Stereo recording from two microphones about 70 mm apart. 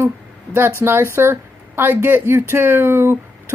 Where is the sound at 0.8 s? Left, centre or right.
Right.